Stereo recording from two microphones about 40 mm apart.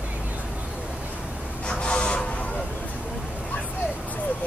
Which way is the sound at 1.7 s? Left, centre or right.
Left.